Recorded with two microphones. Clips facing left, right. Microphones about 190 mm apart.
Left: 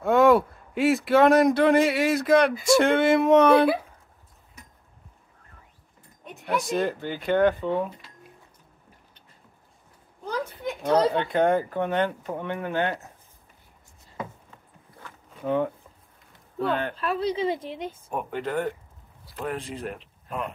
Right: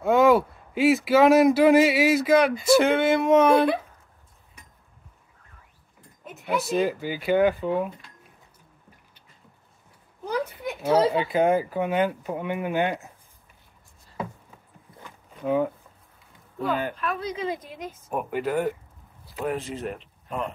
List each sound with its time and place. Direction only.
0.0 s speech: centre (ahead or behind)
6.2 s speech: centre (ahead or behind)
10.2 s speech: 10° right (ahead or behind)
15.0 s a sound: 10° right (ahead or behind)
16.6 s speech: 5° right (ahead or behind)
16.9 s a woman's voice: 30° left (ahead or behind)
18.1 s speech: 5° right (ahead or behind)